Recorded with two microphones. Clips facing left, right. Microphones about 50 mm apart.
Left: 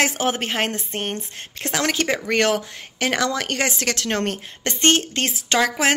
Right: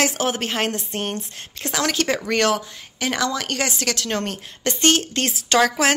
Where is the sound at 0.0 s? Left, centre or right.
Left.